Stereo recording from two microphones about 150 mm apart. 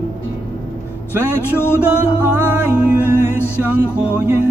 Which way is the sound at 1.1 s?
15° right (ahead or behind).